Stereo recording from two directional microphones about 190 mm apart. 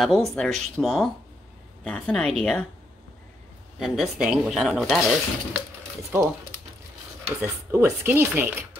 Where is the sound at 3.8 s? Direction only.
Centre (ahead or behind).